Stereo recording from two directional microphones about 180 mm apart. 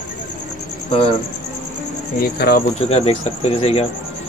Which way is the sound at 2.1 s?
55° left (ahead or behind).